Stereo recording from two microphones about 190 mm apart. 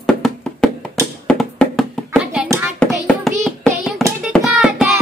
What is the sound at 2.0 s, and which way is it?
Hands, 5° right (ahead or behind).